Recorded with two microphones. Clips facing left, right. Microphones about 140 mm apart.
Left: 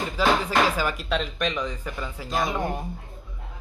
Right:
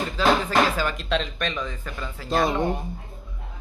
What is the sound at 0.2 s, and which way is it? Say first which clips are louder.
Music: right 1 dB; 10° left (ahead or behind).